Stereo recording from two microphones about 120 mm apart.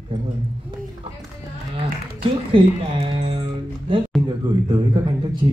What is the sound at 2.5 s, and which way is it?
Speech, 50° right (ahead or behind).